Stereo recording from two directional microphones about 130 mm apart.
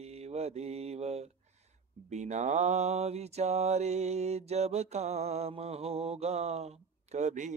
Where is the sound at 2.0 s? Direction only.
65° right (ahead or behind).